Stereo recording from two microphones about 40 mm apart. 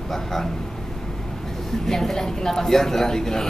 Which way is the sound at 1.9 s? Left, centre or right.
Centre.